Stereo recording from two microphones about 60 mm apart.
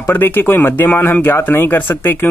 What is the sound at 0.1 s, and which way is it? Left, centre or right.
Speech, left.